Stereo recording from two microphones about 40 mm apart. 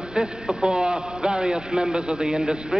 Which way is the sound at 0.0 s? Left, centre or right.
Centre.